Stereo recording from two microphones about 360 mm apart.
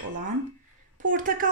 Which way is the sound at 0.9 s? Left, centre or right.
Right.